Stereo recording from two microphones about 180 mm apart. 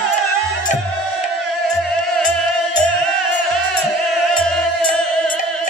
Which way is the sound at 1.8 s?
5° left (ahead or behind).